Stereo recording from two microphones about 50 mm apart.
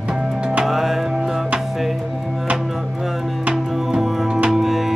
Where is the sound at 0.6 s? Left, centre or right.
Centre.